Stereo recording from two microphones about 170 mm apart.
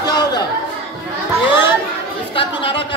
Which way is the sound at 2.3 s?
30° left (ahead or behind).